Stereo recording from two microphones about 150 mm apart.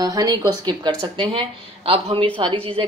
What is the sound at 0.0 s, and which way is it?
A woman's voice, 25° right (ahead or behind).